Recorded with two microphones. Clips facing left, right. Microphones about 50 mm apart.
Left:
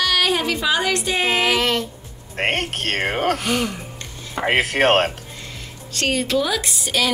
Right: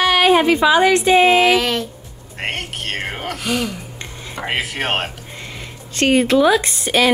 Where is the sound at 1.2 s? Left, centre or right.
Centre.